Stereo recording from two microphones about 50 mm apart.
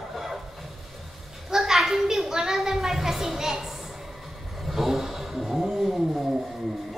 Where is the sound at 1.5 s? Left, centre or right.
Centre.